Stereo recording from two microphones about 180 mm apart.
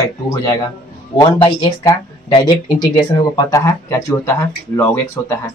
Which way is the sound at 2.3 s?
25° left (ahead or behind).